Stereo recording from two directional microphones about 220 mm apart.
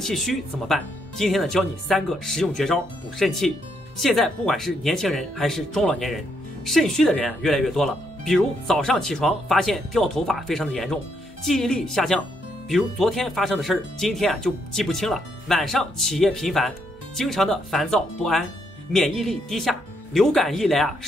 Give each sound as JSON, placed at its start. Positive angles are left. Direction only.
{"t": 0.0, "sound": "speech", "side_deg": 0}